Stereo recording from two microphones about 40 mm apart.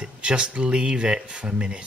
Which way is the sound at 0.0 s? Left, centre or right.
Right.